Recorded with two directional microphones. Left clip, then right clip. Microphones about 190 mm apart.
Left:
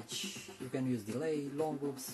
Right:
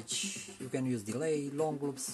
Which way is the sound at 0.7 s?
20° right (ahead or behind).